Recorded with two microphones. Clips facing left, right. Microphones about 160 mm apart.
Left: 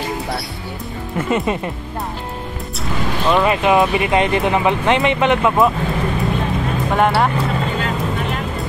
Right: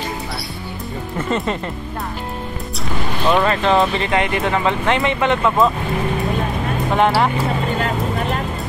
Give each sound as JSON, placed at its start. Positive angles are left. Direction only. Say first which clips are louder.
{"t": 1.1, "sound": "speech", "louder": "left 3 dB", "side_deg": 10}
{"t": 3.4, "sound": "speech", "louder": "left 1 dB", "side_deg": 15}
{"t": 7.0, "sound": "speech", "louder": "even", "side_deg": 0}